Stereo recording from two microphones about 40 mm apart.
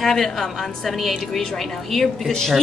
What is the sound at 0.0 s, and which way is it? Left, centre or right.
A woman's voice, centre.